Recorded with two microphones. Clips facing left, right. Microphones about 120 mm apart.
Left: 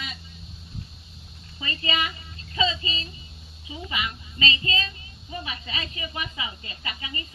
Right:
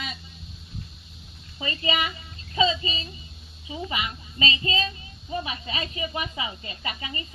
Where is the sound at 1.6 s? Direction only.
25° right (ahead or behind).